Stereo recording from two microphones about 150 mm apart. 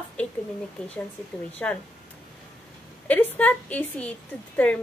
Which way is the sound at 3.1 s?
10° left (ahead or behind).